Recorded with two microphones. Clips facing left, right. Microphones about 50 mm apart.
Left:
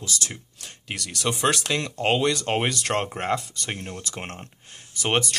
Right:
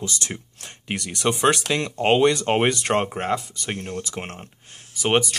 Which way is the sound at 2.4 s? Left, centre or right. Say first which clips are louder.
Right 4 dB; centre.